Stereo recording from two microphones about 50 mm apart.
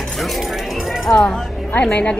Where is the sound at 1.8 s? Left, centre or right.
Left.